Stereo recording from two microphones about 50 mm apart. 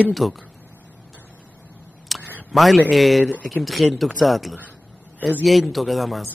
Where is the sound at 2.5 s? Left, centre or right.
Centre.